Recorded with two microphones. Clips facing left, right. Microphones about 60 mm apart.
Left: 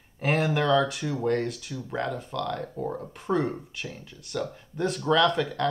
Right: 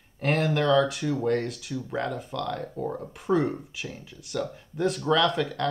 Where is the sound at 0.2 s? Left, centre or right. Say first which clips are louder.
Even; centre.